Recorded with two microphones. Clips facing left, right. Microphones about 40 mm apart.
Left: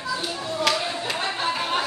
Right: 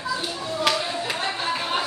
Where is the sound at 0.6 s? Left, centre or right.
Centre.